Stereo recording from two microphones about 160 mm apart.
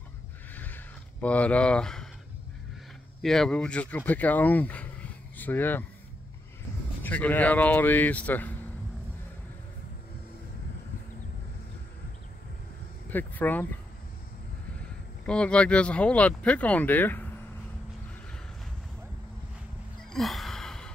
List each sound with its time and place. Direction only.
0.6 s a sound: 10° left (ahead or behind)
3.2 s speech: 5° left (ahead or behind)
7.0 s speech: 10° left (ahead or behind)
13.1 s speech: 10° left (ahead or behind)
15.2 s speech: 5° left (ahead or behind)
20.0 s gasp: centre (ahead or behind)